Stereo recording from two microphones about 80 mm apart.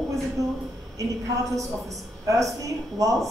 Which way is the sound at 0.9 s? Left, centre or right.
Right.